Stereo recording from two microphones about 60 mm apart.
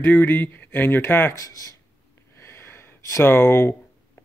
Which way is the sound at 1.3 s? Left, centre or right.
Left.